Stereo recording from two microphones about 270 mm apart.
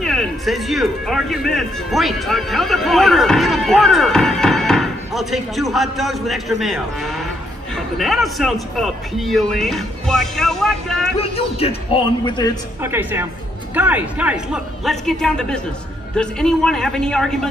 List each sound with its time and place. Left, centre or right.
0.0 s a man's voice: centre
11.1 s a man's voice: left
12.8 s a woman's voice: centre